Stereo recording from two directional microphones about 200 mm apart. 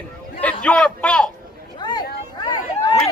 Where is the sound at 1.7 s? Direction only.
20° left (ahead or behind).